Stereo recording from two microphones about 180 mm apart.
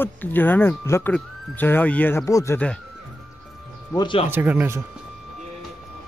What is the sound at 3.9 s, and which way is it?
Speech, 25° left (ahead or behind).